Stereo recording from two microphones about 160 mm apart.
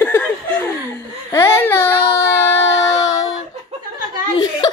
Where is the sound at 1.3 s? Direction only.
15° left (ahead or behind).